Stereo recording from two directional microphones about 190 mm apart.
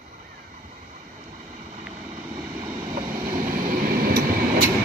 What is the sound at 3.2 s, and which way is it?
Vehicle, 45° right (ahead or behind).